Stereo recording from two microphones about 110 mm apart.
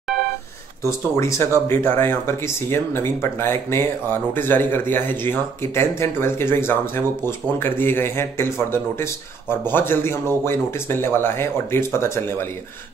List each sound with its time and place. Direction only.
0.8 s speech: 25° left (ahead or behind)